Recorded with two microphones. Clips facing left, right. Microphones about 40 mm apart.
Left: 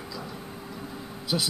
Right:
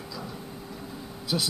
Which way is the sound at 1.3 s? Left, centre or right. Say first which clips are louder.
Left 1 dB; centre.